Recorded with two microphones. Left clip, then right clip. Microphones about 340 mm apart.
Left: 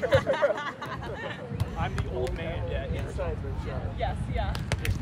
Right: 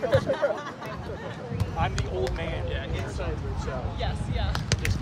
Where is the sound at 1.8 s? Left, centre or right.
Right.